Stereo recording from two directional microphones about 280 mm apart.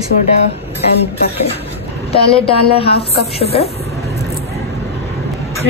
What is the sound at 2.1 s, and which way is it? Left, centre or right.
Speech, centre.